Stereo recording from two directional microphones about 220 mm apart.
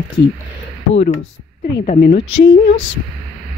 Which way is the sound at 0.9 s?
30° left (ahead or behind).